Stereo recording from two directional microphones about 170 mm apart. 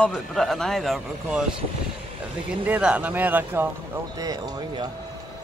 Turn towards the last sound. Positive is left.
turn(degrees=-25)  # may be behind; listen again after turning